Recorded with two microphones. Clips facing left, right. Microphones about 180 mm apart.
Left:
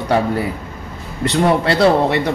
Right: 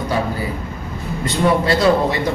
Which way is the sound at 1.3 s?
65° left (ahead or behind).